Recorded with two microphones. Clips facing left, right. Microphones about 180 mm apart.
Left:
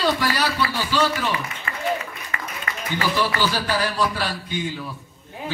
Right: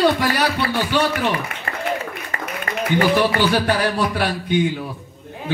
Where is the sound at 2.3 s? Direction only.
35° right (ahead or behind).